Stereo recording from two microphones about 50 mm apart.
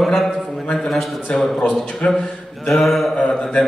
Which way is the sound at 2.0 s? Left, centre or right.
Left.